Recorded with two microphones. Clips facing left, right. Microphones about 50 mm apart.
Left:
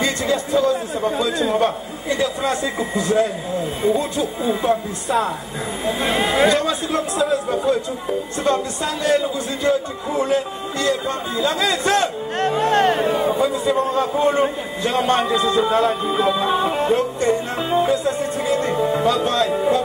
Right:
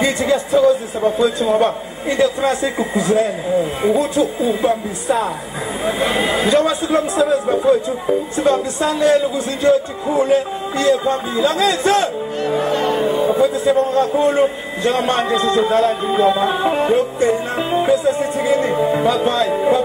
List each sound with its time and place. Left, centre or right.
0.0 s a man's voice: centre
2.6 s music: centre
3.8 s a man's voice: centre
7.4 s music: centre
11.5 s a man's voice: centre
12.4 s speech: left
13.3 s a man's voice: centre
16.1 s music: centre